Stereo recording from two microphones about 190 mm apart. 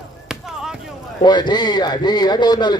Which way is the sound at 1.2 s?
25° left (ahead or behind).